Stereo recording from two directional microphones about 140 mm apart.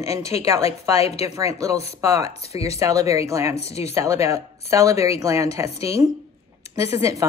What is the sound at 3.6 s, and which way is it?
Speech, 50° left (ahead or behind).